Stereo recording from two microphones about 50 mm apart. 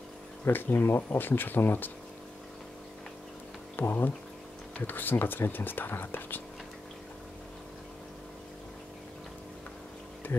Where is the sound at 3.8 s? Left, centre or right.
Left.